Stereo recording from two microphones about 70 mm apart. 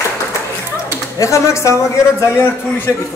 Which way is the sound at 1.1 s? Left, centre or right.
Left.